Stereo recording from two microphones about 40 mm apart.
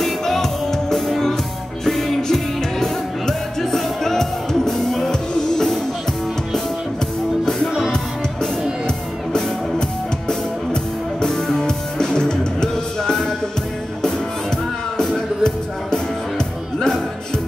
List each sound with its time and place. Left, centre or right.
0.0 s music: centre
7.4 s music: centre
8.8 s music: centre